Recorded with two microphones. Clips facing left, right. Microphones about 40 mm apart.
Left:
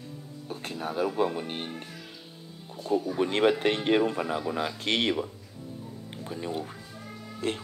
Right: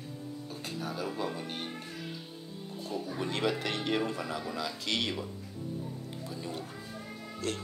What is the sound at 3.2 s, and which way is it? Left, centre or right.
Speech, left.